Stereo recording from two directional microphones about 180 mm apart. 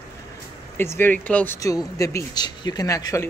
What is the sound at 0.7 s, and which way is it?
Speech, 10° left (ahead or behind).